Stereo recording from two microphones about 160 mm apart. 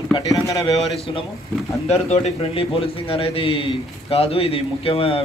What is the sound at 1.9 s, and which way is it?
A man's voice, 40° left (ahead or behind).